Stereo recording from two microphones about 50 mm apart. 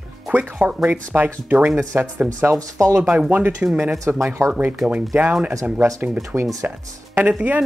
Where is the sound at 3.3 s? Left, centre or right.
Right.